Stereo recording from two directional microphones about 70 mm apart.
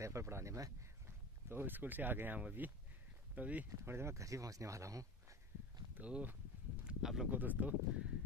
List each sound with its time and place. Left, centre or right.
0.0 s speech: right
1.5 s speech: right
3.8 s speech: right
5.9 s speech: right
6.8 s a sound: centre
7.2 s speech: right